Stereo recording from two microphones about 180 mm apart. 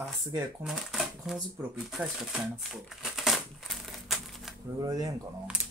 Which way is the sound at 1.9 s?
Centre (ahead or behind).